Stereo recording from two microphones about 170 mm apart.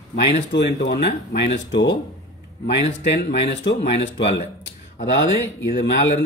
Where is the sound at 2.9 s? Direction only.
45° left (ahead or behind).